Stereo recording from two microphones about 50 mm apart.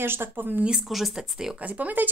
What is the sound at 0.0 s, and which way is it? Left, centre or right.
Speech, right.